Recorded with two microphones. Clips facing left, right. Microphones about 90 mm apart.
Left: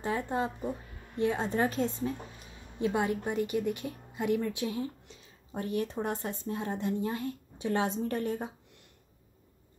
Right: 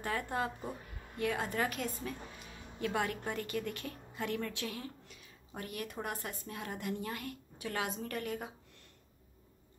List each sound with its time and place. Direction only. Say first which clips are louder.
0.0 s a woman's voice: left 4 dB; 20° left (ahead or behind)